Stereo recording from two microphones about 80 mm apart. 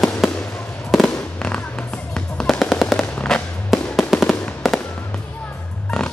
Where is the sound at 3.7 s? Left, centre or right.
Centre.